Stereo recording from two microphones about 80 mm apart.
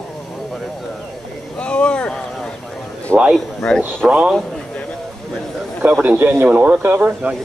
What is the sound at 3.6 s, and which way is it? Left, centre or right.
Speech, centre.